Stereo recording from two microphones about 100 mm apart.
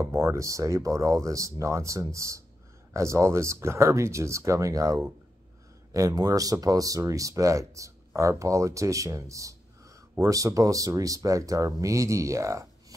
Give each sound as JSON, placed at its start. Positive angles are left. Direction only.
{"t": 0.0, "sound": "speech", "side_deg": -30}